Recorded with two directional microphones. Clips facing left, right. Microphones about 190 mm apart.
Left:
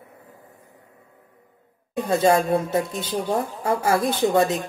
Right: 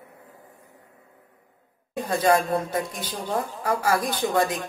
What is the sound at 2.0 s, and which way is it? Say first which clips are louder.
Speech: left 3 dB; 25° left (ahead or behind).